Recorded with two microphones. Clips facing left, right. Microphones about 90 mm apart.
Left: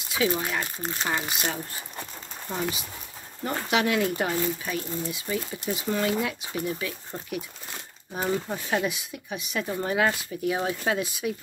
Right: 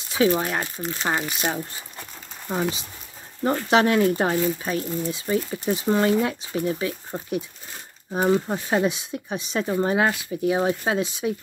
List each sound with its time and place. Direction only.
0.1 s speech: 30° right (ahead or behind)
2.5 s speech: 20° right (ahead or behind)
3.4 s speech: 35° right (ahead or behind)
8.5 s speech: 30° right (ahead or behind)